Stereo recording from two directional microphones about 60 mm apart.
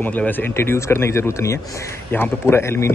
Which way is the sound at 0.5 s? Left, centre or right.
Left.